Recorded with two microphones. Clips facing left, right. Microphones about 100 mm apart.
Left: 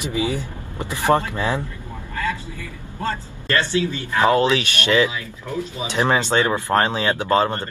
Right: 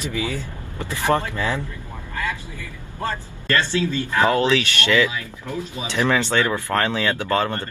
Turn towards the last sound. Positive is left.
turn(degrees=20)  # may be behind; listen again after turning